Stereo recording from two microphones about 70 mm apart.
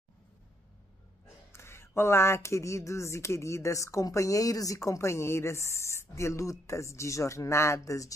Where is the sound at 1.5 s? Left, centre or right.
Left.